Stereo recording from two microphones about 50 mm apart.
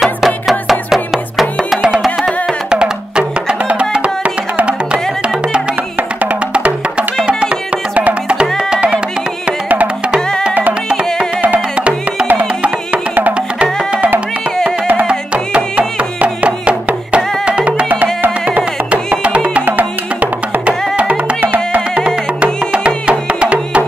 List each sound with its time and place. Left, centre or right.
0.0 s music: centre
2.7 s music: centre
6.5 s music: right
7.9 s music: right
8.5 s music: centre
11.4 s music: right
15.0 s music: right
19.2 s music: right
19.6 s music: right
20.6 s music: right